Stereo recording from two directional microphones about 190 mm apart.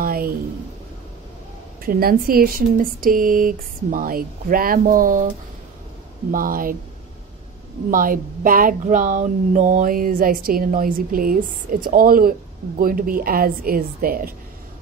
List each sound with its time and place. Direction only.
0.0 s a sound: 50° right (ahead or behind)
1.9 s speech: 50° right (ahead or behind)
6.3 s speech: 45° right (ahead or behind)
7.9 s speech: 50° right (ahead or behind)